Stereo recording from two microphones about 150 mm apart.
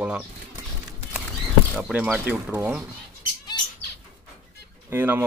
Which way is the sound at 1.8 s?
10° right (ahead or behind).